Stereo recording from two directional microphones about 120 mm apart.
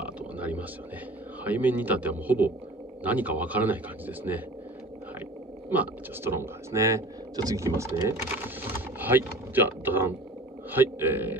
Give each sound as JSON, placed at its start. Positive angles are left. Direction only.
{"t": 0.0, "sound": "a sound", "side_deg": -10}
{"t": 1.4, "sound": "speech", "side_deg": -15}
{"t": 5.7, "sound": "speech", "side_deg": -15}